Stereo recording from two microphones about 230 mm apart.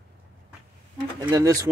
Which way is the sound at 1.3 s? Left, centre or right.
Centre.